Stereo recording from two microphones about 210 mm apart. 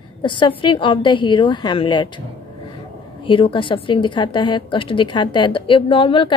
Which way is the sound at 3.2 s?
25° left (ahead or behind).